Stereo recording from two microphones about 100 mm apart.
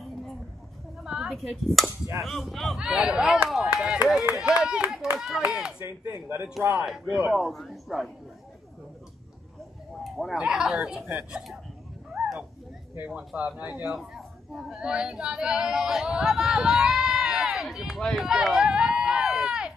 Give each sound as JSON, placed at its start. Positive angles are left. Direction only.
{"t": 1.0, "sound": "speech", "side_deg": -5}
{"t": 6.2, "sound": "a man's voice", "side_deg": -20}
{"t": 6.8, "sound": "speech", "side_deg": 0}
{"t": 10.0, "sound": "speech", "side_deg": 0}
{"t": 12.1, "sound": "a sound", "side_deg": -5}
{"t": 12.9, "sound": "speech", "side_deg": -10}